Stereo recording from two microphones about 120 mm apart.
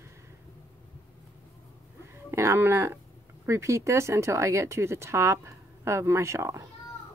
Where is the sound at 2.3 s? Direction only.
25° right (ahead or behind).